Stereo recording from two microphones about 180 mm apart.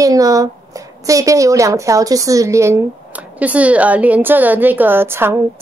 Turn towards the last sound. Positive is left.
turn(degrees=-15)  # may be behind; listen again after turning